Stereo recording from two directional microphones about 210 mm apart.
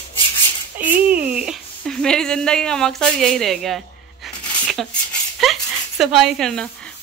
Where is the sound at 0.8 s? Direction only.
10° right (ahead or behind).